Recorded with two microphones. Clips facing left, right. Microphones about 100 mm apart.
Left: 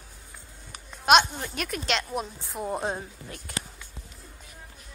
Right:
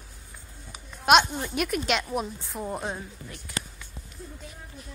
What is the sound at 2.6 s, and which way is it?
Speech, 25° left (ahead or behind).